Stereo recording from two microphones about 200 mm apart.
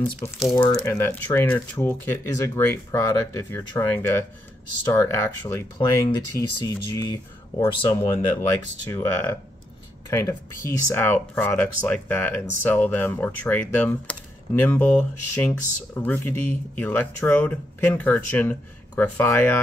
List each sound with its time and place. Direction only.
0.2 s speech: 15° left (ahead or behind)
8.1 s speech: 10° left (ahead or behind)